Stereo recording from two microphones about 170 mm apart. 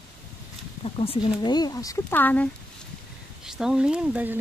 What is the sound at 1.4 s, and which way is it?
Speech, 25° left (ahead or behind).